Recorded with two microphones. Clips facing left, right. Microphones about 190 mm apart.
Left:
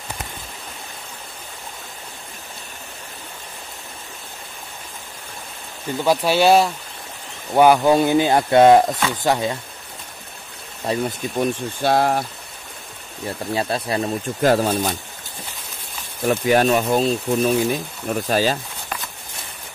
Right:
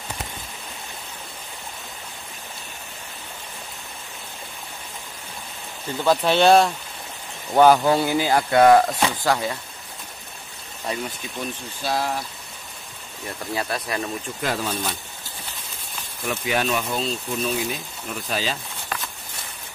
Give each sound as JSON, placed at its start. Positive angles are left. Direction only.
{"t": 6.0, "sound": "speech", "side_deg": 10}
{"t": 10.9, "sound": "speech", "side_deg": 30}
{"t": 11.3, "sound": "speech", "side_deg": 60}
{"t": 13.5, "sound": "speech", "side_deg": 25}
{"t": 14.4, "sound": "speech", "side_deg": 45}
{"t": 16.3, "sound": "speech", "side_deg": 45}